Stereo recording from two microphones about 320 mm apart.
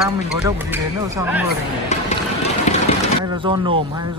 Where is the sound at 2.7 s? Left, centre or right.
Left.